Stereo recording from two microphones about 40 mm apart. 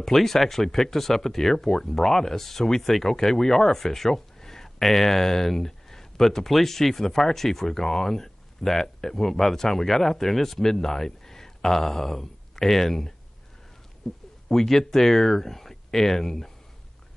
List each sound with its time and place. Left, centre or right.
0.0 s speech: centre